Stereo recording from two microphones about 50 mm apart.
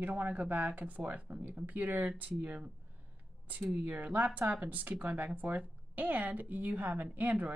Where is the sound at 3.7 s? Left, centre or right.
Right.